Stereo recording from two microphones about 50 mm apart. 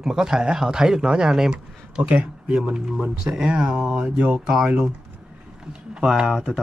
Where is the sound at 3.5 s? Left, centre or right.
Centre.